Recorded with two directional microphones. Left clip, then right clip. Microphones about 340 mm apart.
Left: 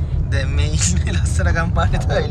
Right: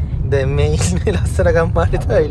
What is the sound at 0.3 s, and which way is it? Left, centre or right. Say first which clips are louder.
Speech: right 10 dB; centre.